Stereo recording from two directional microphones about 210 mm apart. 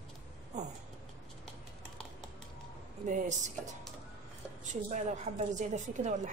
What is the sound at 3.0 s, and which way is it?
Speech, 35° right (ahead or behind).